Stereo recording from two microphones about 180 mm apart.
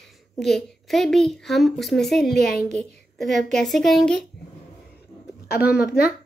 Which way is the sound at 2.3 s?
60° left (ahead or behind).